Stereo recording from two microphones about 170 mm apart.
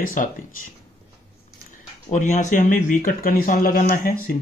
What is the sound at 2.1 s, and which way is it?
Speech, 45° left (ahead or behind).